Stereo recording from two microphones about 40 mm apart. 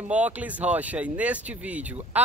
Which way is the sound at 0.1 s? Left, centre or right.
Right.